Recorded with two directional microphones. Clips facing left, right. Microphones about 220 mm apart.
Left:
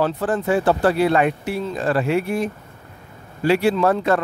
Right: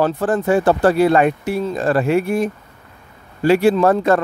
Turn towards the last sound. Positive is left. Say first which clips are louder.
# right 4 dB
turn(degrees=-45)  # may be behind; listen again after turning